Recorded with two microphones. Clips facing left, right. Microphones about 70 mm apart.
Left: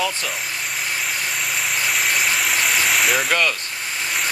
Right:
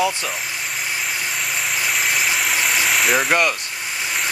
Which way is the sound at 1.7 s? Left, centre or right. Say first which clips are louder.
Even; centre.